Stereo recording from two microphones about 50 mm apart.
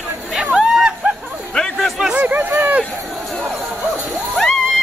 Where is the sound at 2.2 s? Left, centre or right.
Right.